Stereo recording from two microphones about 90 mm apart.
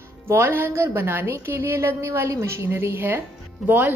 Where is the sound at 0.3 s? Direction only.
30° right (ahead or behind).